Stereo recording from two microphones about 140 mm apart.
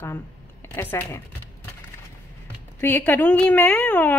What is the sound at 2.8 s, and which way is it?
A woman's voice, 10° left (ahead or behind).